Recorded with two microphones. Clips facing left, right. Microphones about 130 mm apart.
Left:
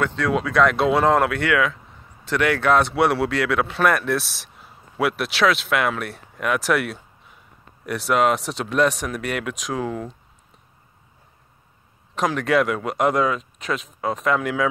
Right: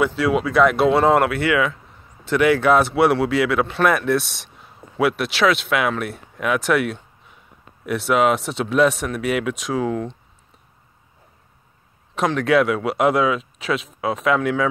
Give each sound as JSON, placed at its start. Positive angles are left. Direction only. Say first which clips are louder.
{"t": 0.0, "sound": "speech", "louder": "right 3 dB", "side_deg": -5}
{"t": 12.2, "sound": "speech", "louder": "right 2 dB", "side_deg": 0}